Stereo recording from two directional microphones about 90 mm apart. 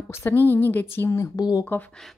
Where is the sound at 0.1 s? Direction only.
25° left (ahead or behind).